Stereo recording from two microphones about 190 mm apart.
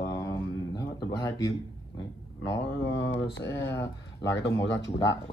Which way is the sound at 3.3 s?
65° left (ahead or behind).